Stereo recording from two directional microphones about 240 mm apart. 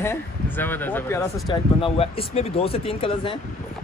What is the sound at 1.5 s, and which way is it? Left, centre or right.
Speech, centre.